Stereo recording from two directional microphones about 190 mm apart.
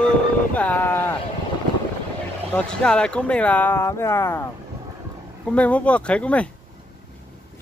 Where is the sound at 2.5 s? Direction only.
5° left (ahead or behind).